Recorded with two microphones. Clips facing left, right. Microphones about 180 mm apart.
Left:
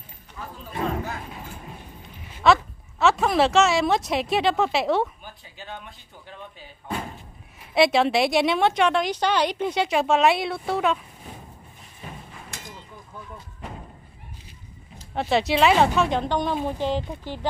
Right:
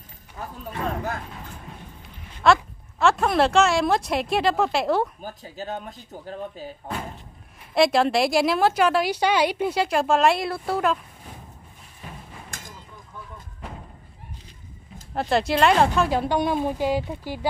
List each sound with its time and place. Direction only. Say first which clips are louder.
0.4 s speech: left 1 dB; 50° right (ahead or behind)
1.3 s vehicle: left 1 dB; 5° left (ahead or behind)
2.3 s speech: even; centre (ahead or behind)
5.2 s speech: right 8 dB; 40° right (ahead or behind)
7.7 s a woman's voice: even; centre (ahead or behind)
12.4 s vehicle: left 1 dB; 45° right (ahead or behind)
15.1 s a woman's voice: even; centre (ahead or behind)